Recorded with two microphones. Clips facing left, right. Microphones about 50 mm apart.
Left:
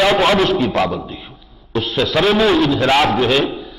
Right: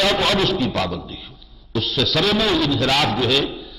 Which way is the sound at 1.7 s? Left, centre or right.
Left.